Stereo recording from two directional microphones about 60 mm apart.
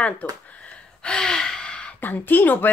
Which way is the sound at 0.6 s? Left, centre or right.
Centre.